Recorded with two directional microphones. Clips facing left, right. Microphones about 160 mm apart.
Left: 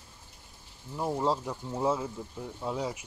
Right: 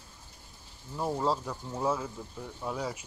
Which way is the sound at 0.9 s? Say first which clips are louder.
Left 1 dB; 15° left (ahead or behind).